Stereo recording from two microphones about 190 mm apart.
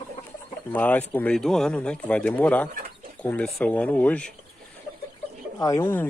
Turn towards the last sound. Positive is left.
turn(degrees=15)  # may be behind; listen again after turning